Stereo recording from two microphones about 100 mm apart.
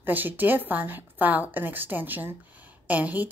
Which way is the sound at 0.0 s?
20° right (ahead or behind).